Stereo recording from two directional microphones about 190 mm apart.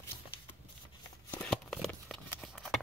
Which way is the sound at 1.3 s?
5° left (ahead or behind).